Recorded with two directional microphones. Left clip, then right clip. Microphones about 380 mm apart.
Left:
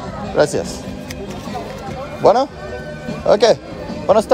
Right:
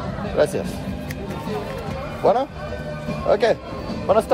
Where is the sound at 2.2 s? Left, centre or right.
Left.